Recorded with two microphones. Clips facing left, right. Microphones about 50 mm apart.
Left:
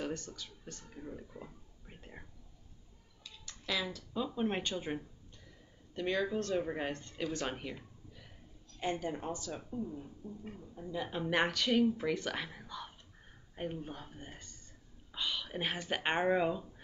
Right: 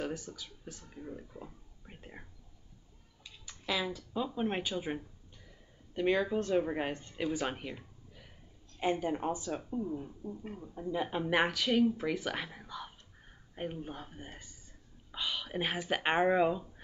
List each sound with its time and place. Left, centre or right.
0.0 s speech: centre
3.3 s speech: centre
5.9 s speech: centre